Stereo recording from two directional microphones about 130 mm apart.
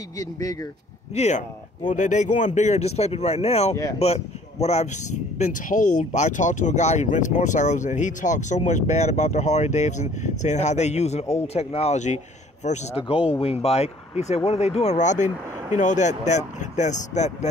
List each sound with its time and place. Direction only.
0.2 s speech: 25° left (ahead or behind)
1.1 s speech: 60° left (ahead or behind)
1.9 s speech: 70° left (ahead or behind); by 4.8 s 55° left (ahead or behind)
5.4 s speech: 85° left; by 17.5 s 65° left (ahead or behind)